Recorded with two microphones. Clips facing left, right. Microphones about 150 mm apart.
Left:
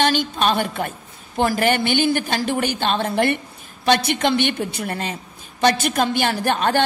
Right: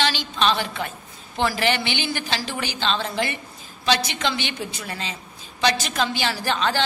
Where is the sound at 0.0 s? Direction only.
50° left (ahead or behind).